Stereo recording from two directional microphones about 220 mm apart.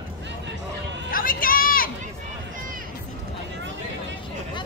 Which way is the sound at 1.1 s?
40° left (ahead or behind).